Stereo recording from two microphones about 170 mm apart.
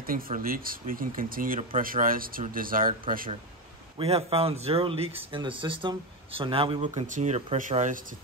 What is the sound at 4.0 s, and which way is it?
Speech, 35° right (ahead or behind).